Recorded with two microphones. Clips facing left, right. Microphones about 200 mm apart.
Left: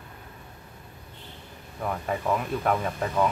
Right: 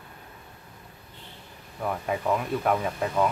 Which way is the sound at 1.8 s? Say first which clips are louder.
Right 1 dB; 5° right (ahead or behind).